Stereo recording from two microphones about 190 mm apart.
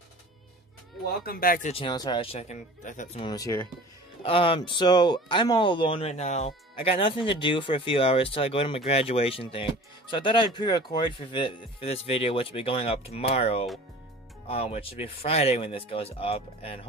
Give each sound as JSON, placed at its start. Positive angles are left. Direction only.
{"t": 1.0, "sound": "speech", "side_deg": 50}
{"t": 1.7, "sound": "speech", "side_deg": 25}
{"t": 3.2, "sound": "speech", "side_deg": 20}
{"t": 4.2, "sound": "speech", "side_deg": 30}